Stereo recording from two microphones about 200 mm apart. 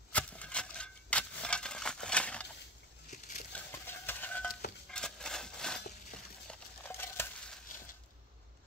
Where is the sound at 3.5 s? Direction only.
10° left (ahead or behind).